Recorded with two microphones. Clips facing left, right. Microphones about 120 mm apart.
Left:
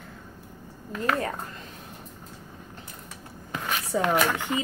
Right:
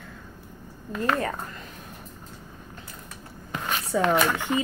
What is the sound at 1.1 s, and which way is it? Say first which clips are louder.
Speech: right 1 dB; 30° right (ahead or behind).